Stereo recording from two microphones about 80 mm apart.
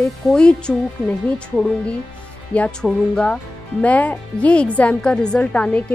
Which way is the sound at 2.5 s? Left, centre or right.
Centre.